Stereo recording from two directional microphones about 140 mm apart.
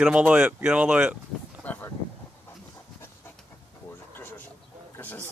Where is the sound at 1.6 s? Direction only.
10° left (ahead or behind).